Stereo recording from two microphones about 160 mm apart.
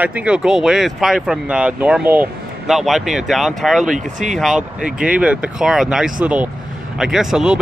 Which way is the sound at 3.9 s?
50° right (ahead or behind).